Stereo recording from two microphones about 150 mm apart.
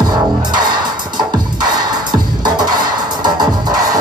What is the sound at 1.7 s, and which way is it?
Music, 30° right (ahead or behind).